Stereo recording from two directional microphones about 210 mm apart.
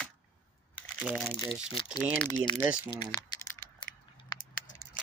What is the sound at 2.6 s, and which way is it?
Speech, 5° right (ahead or behind).